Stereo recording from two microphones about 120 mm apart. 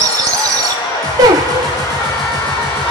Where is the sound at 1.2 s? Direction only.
35° right (ahead or behind).